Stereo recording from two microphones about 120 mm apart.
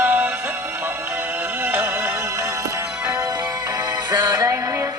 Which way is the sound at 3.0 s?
30° right (ahead or behind).